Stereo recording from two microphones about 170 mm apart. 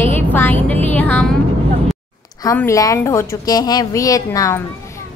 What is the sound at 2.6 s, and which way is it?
A woman's voice, 20° left (ahead or behind).